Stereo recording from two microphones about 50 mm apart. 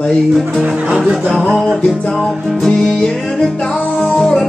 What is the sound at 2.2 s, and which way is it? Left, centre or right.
Music, centre.